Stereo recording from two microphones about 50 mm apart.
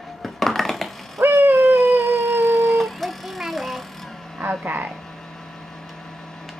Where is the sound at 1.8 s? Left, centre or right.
Centre.